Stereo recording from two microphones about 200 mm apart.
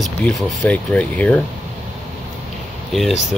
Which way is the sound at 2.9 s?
Centre (ahead or behind).